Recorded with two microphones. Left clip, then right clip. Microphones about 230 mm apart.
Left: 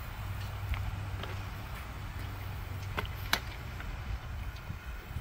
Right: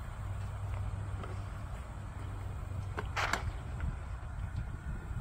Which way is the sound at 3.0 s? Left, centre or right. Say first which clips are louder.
Left 4 dB; left.